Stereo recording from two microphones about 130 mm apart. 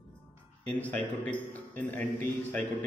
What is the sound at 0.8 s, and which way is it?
A man's voice, 10° left (ahead or behind).